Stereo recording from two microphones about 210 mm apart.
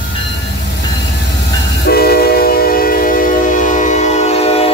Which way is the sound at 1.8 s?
50° left (ahead or behind).